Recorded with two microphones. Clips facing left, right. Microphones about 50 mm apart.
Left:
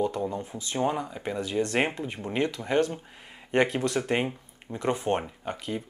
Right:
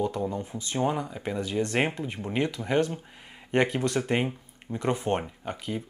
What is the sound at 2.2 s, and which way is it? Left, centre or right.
Speech, centre.